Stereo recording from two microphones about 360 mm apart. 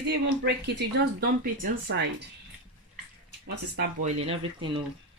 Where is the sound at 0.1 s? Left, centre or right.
Right.